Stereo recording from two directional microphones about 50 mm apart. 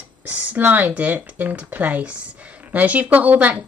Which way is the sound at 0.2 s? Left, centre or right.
Right.